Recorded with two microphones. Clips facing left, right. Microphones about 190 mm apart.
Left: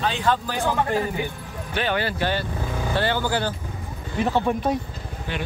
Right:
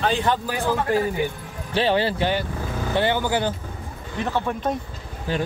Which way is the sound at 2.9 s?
15° right (ahead or behind).